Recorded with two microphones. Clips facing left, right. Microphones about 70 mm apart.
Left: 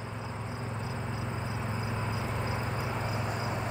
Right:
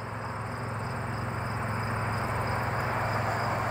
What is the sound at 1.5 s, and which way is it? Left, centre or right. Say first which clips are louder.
Vehicle: right 4 dB; right.